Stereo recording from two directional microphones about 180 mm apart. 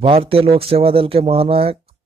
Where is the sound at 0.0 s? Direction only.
30° right (ahead or behind).